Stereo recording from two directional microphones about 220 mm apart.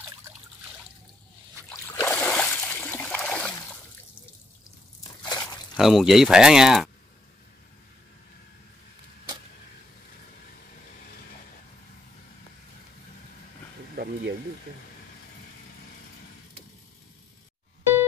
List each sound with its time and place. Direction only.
1.7 s a sound: 5° left (ahead or behind)
5.2 s crunch: 15° left (ahead or behind)
5.8 s speech: centre (ahead or behind)
13.9 s vehicle: 45° right (ahead or behind)